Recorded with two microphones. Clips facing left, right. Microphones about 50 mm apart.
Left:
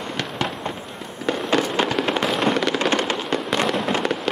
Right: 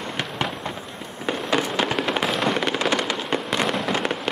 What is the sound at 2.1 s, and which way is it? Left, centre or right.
Fireworks, centre.